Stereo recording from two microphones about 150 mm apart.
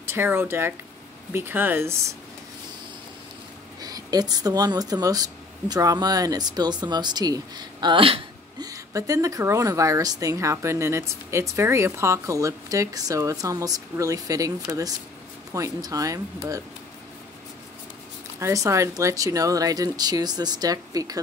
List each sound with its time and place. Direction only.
0.0 s speech: 15° right (ahead or behind)
3.8 s speech: 25° right (ahead or behind)
8.6 s speech: 20° right (ahead or behind)
18.4 s speech: 20° right (ahead or behind)